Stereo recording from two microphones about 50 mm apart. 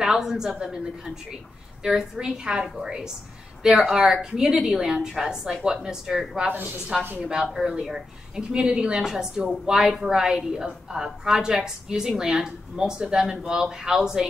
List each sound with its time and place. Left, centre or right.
0.0 s a woman's voice: centre